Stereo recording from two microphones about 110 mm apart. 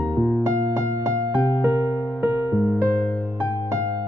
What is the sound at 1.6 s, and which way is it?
Music, 20° right (ahead or behind).